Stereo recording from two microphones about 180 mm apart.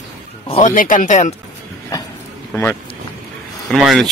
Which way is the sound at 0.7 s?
50° left (ahead or behind).